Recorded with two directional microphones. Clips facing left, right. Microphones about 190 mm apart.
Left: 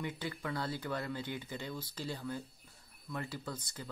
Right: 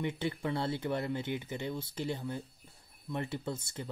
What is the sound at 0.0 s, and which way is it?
Speech, 25° right (ahead or behind).